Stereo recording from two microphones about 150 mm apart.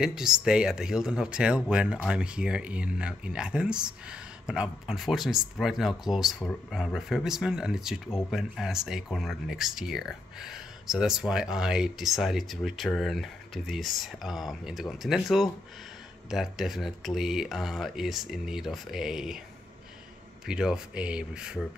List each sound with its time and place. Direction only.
0.0 s speech: 5° right (ahead or behind)
20.4 s speech: 5° right (ahead or behind)